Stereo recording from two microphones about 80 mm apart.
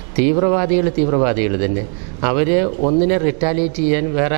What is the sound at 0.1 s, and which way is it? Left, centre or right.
A man's voice, centre.